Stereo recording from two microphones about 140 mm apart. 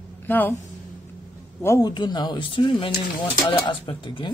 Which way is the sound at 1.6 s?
20° left (ahead or behind).